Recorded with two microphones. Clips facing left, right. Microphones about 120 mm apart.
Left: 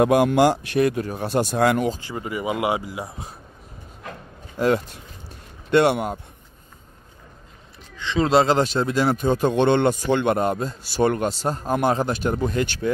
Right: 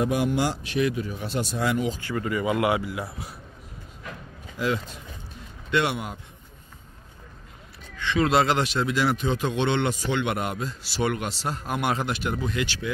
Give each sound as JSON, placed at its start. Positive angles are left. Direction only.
{"t": 0.0, "sound": "speech", "side_deg": 65}
{"t": 2.0, "sound": "speech", "side_deg": 20}
{"t": 4.0, "sound": "a sound", "side_deg": 50}
{"t": 5.7, "sound": "speech", "side_deg": 50}
{"t": 7.9, "sound": "speech", "side_deg": 25}